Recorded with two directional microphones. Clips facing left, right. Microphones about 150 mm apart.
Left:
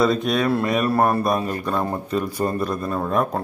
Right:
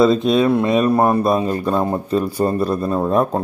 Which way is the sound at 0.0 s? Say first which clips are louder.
Right 5 dB; 25° right (ahead or behind).